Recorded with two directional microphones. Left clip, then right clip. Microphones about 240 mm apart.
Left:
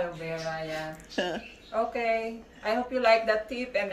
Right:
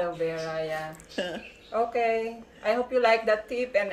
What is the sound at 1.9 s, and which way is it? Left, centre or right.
A woman's voice, centre.